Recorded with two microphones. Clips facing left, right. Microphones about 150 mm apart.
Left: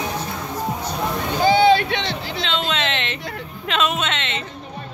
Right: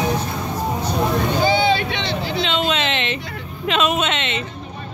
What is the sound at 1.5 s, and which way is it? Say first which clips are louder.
Vehicle: left 3 dB; 45° left (ahead or behind).